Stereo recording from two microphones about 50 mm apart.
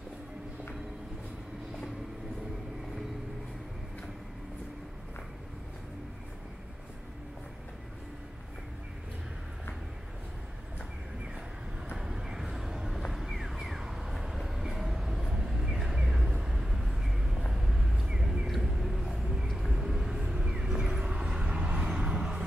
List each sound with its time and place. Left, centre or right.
12.0 s a sound: centre
13.1 s vehicle: centre
14.1 s train: centre
17.5 s vehicle: centre
18.5 s a sound: centre
19.1 s vehicle: centre